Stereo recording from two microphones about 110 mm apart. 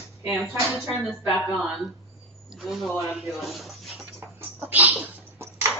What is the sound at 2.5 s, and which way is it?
Speech, centre (ahead or behind).